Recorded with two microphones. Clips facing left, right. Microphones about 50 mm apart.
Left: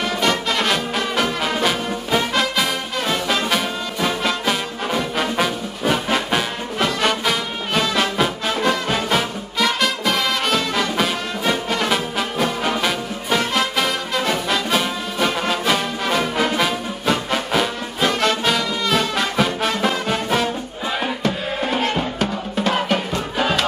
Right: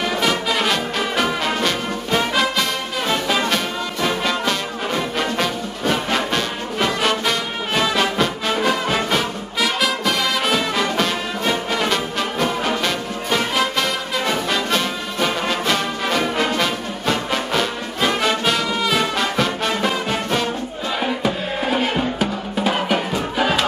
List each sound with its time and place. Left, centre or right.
0.0 s music: centre